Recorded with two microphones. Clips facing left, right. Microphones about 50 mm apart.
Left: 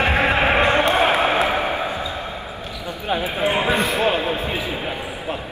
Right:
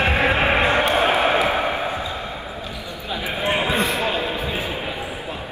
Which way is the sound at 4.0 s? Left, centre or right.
Left.